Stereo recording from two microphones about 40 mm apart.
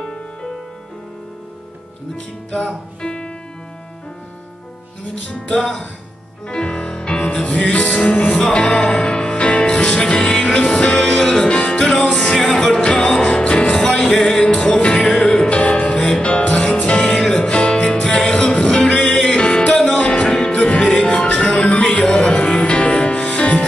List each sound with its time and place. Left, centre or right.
0.0 s music: centre
2.5 s music: left
5.2 s music: left
11.1 s music: centre
11.4 s music: left
12.3 s music: centre
12.8 s music: centre
17.2 s music: left